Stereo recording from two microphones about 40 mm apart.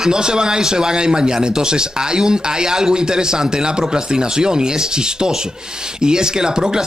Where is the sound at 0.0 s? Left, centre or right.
Centre.